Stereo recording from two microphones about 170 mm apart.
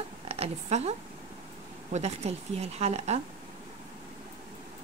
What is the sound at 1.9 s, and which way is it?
A woman's voice, 40° right (ahead or behind).